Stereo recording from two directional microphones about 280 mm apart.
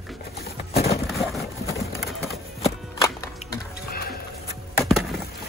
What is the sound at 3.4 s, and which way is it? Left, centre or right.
Music, left.